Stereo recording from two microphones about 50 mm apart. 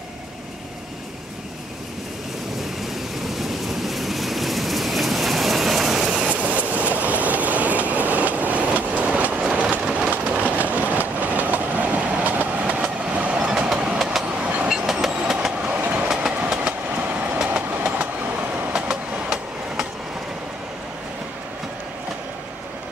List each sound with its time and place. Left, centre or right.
3.3 s vehicle: centre
6.1 s train: right
13.4 s train: centre
14.4 s train: right
14.7 s train: centre
15.8 s train: right; by 19.9 s centre